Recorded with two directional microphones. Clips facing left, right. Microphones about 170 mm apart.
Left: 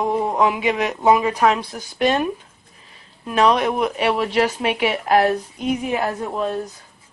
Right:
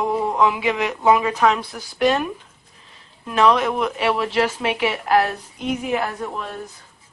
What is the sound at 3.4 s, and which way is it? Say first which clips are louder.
Speech: even; 15° left (ahead or behind).